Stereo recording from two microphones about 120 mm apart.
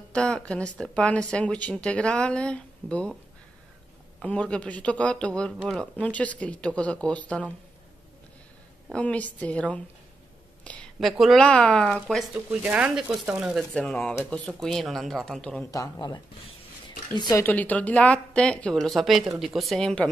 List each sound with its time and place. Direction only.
0.1 s speech: 10° left (ahead or behind)
4.2 s speech: 10° left (ahead or behind)
8.9 s speech: 10° left (ahead or behind)
10.6 s a sound: 10° left (ahead or behind)
11.0 s speech: centre (ahead or behind)
12.4 s speech: 10° right (ahead or behind)
13.7 s speech: 10° left (ahead or behind)
15.6 s speech: 30° left (ahead or behind)
17.2 s speech: 30° left (ahead or behind)
17.5 s speech: 15° left (ahead or behind)